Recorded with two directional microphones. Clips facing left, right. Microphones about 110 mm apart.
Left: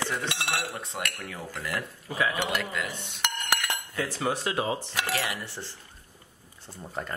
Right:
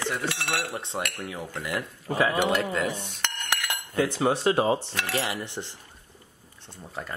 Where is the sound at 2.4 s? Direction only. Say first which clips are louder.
Right 6 dB; 40° right (ahead or behind).